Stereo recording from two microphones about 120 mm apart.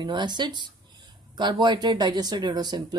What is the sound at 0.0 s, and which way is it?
Speech, 40° right (ahead or behind).